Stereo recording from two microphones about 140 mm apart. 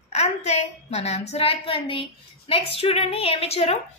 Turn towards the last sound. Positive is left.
turn(degrees=45)  # may be behind; listen again after turning